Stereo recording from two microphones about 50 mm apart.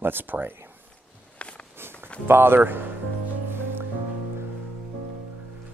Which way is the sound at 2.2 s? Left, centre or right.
Right.